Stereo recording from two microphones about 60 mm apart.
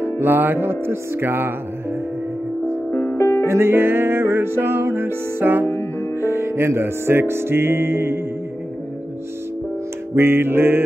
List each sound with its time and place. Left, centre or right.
0.0 s music: right
2.9 s music: left
3.2 s music: left
3.4 s music: right
10.1 s music: right